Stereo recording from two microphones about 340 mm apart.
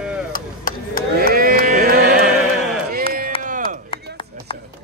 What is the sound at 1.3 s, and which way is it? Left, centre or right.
Music, right.